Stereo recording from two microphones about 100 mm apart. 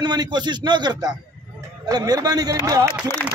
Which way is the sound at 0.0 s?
45° right (ahead or behind).